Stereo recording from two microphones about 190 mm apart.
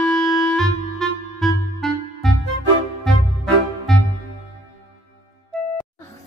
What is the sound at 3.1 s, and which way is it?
Music, 5° left (ahead or behind).